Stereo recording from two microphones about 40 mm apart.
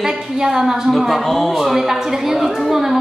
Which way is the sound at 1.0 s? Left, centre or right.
Centre.